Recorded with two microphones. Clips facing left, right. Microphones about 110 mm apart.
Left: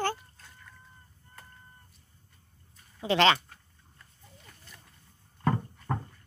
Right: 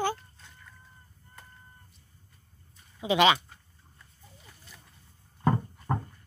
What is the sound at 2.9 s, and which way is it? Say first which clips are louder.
Speech: right 1 dB; 15° right (ahead or behind).